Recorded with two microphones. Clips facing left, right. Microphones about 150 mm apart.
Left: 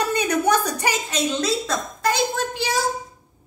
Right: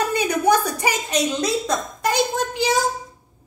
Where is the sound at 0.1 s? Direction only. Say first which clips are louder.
Right 2 dB; 15° right (ahead or behind).